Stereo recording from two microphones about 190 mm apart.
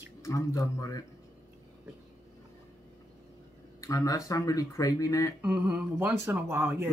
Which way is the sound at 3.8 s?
15° left (ahead or behind).